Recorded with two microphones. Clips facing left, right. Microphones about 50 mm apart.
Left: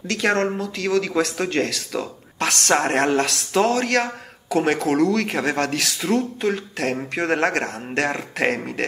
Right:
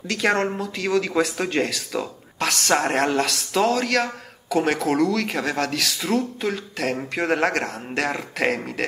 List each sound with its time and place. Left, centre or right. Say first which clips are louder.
0.1 s speech: left 1 dB; centre